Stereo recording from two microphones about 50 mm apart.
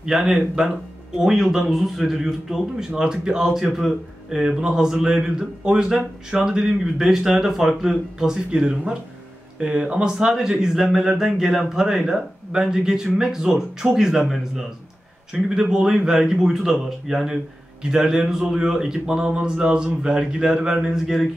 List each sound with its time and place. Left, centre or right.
0.0 s speech: centre
15.6 s speech: centre